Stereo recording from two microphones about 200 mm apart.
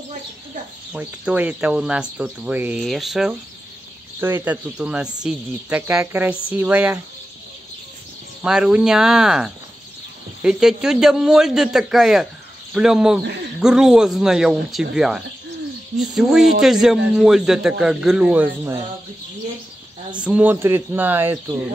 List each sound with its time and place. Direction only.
0.9 s speech: 5° right (ahead or behind)
8.4 s speech: 5° right (ahead or behind)
20.2 s speech: 5° right (ahead or behind)